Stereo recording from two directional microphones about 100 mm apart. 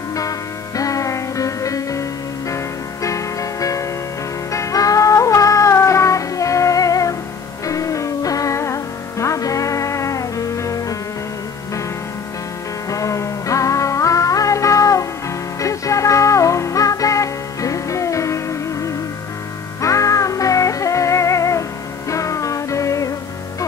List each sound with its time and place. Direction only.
0.1 s music: 35° left (ahead or behind)
12.9 s music: 30° left (ahead or behind)